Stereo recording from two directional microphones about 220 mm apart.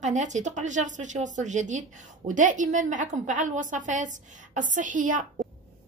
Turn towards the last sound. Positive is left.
turn(degrees=-35)  # may be behind; listen again after turning